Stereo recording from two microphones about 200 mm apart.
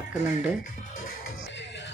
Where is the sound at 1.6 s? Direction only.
60° left (ahead or behind).